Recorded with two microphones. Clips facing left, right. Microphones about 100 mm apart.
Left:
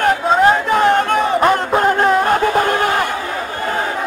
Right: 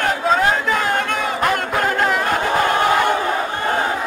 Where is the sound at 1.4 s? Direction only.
30° left (ahead or behind).